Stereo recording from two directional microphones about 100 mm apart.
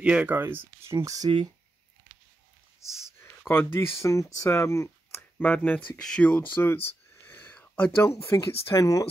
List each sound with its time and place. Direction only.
0.0 s speech: 10° right (ahead or behind)
0.9 s speech: 40° right (ahead or behind)
2.8 s speech: 40° right (ahead or behind)
3.2 s speech: 25° left (ahead or behind)
5.4 s speech: 15° left (ahead or behind)
7.2 s a sound: 20° left (ahead or behind)
8.1 s speech: 30° left (ahead or behind)